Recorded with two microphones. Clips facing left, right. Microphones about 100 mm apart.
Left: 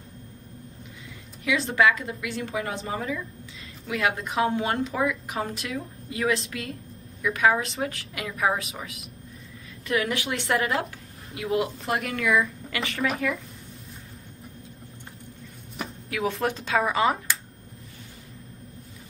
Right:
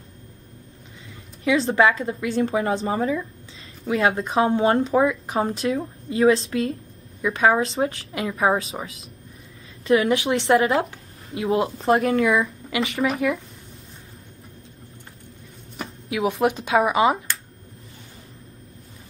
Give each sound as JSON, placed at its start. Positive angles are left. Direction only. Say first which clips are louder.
{"t": 1.4, "sound": "a woman's voice", "louder": "right 4 dB", "side_deg": -30}
{"t": 16.1, "sound": "speech", "louder": "right 6 dB", "side_deg": -20}